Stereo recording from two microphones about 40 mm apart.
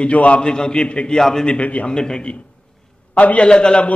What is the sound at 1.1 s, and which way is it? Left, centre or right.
Speech, centre.